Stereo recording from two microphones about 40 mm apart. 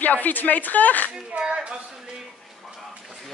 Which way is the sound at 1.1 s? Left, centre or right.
Right.